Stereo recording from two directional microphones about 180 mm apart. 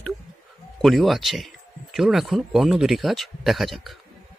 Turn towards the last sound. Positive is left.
turn(degrees=0)  # may be behind; listen again after turning